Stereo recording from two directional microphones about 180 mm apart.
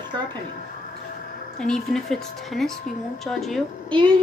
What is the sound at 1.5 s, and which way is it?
A woman's voice, 5° left (ahead or behind).